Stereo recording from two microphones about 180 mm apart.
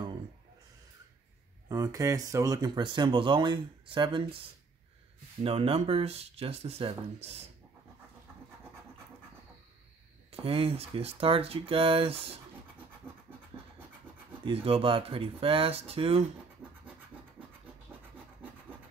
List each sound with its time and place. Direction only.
1.7 s speech: 20° right (ahead or behind)
5.4 s speech: 30° right (ahead or behind)
10.3 s speech: 30° right (ahead or behind)
13.5 s scratch: 25° right (ahead or behind)
14.4 s speech: 30° right (ahead or behind)